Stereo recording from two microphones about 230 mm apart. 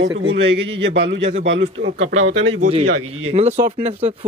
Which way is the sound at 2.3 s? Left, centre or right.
Right.